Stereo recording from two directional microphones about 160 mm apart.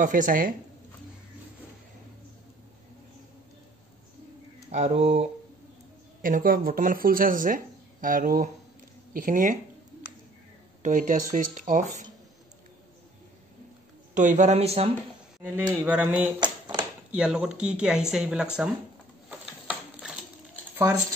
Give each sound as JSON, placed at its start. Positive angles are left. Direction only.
{"t": 0.0, "sound": "speech", "side_deg": -55}
{"t": 4.6, "sound": "speech", "side_deg": -40}
{"t": 6.2, "sound": "speech", "side_deg": -60}
{"t": 10.8, "sound": "speech", "side_deg": -55}
{"t": 14.1, "sound": "speech", "side_deg": -50}
{"t": 15.7, "sound": "a sound", "side_deg": -10}
{"t": 16.3, "sound": "a sound", "side_deg": -30}
{"t": 17.1, "sound": "speech", "side_deg": -5}
{"t": 19.2, "sound": "a sound", "side_deg": -5}
{"t": 20.7, "sound": "speech", "side_deg": -15}